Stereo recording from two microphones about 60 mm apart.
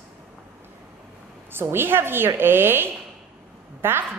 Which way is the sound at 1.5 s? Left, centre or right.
Right.